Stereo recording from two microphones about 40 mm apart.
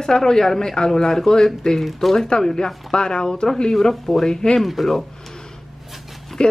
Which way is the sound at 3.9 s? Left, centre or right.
Centre.